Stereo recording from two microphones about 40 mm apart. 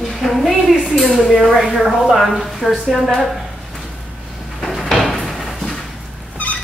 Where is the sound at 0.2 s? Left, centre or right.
Centre.